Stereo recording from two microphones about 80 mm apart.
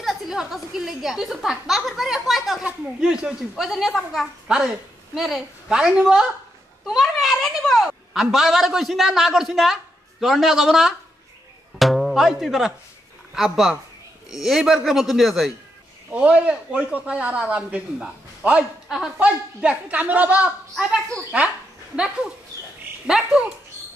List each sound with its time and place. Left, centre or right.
0.0 s a woman's voice: centre
16.1 s speech: centre
21.9 s speech: centre